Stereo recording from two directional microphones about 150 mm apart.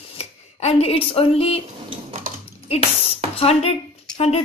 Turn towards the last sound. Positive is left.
turn(degrees=45)  # may be behind; listen again after turning